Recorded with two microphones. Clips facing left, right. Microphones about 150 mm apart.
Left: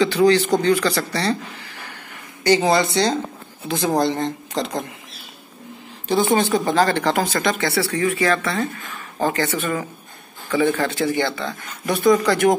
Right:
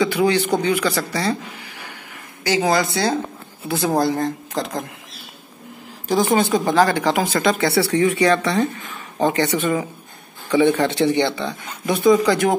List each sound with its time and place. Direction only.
0.0 s speech: 10° right (ahead or behind)
2.4 s speech: centre (ahead or behind)
6.5 s speech: 15° right (ahead or behind)
7.3 s speech: 25° right (ahead or behind)